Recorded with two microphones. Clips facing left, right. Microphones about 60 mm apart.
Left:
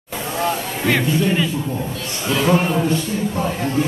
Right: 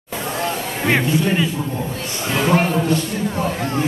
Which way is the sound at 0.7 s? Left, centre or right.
Right.